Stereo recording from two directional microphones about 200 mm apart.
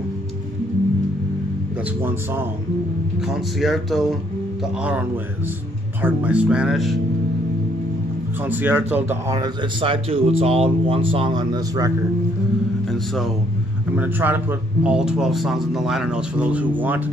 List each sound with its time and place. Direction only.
3.3 s a man's voice: centre (ahead or behind)
6.0 s a man's voice: 5° right (ahead or behind)
8.5 s a man's voice: 10° right (ahead or behind)
12.9 s speech: centre (ahead or behind)
13.9 s a man's voice: 10° right (ahead or behind)